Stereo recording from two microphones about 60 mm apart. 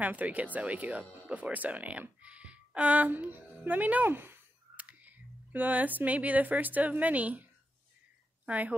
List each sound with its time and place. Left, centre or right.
0.0 s speech: right
4.7 s speech: right
8.5 s speech: right